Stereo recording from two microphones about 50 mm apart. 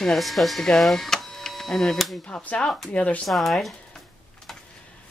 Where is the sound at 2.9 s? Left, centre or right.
Left.